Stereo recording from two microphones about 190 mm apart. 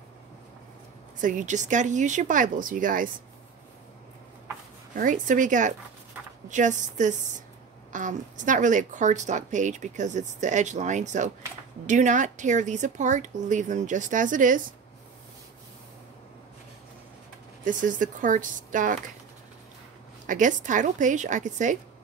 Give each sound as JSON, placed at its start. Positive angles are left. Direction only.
{"t": 1.2, "sound": "speech", "side_deg": -40}
{"t": 4.9, "sound": "a woman's voice", "side_deg": -45}
{"t": 17.6, "sound": "speech", "side_deg": -45}
{"t": 20.2, "sound": "a woman's voice", "side_deg": -40}